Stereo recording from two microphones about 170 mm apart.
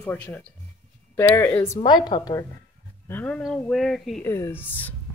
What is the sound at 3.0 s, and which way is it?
Speech, 10° left (ahead or behind).